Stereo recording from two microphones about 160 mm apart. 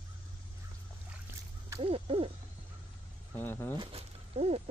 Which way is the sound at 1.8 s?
35° right (ahead or behind).